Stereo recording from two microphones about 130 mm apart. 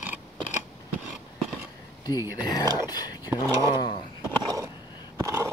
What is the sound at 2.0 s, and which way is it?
Speech, 30° left (ahead or behind).